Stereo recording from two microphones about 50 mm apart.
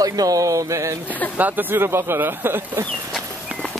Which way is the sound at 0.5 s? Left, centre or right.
Right.